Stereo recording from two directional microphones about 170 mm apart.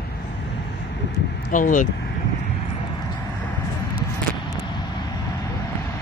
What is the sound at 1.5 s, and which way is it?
Speech, 50° left (ahead or behind).